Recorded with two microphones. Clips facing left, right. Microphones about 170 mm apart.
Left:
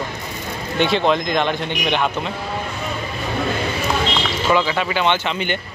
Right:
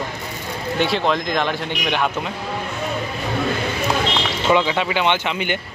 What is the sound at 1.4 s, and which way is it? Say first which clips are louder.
Speech: left 2 dB; 20° left (ahead or behind).